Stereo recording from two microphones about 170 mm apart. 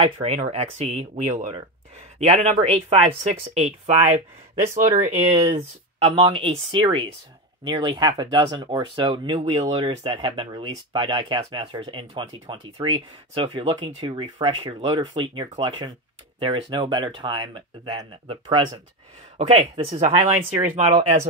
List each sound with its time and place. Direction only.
0.0 s speech: 35° right (ahead or behind)